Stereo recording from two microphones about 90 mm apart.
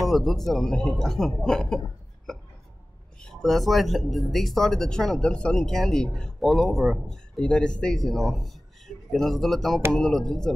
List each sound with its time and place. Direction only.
0.1 s speech: centre (ahead or behind)
3.2 s speech: 5° left (ahead or behind)
7.3 s speech: 10° left (ahead or behind)